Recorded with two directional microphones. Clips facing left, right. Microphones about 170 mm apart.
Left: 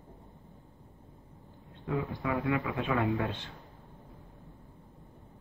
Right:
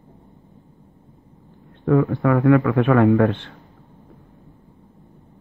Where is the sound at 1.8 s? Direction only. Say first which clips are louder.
Right 15 dB; 65° right (ahead or behind).